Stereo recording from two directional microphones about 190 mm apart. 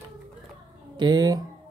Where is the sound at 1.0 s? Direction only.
20° right (ahead or behind).